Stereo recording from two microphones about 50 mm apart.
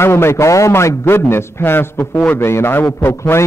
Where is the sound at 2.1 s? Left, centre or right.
Left.